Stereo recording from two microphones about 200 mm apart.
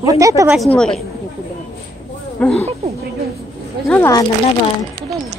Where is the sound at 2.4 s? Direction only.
5° left (ahead or behind).